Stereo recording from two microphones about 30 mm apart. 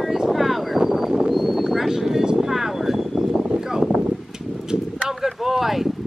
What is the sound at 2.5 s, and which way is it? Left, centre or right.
Vehicle, centre.